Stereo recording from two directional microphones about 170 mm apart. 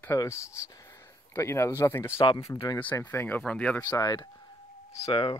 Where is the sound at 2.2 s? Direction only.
25° left (ahead or behind).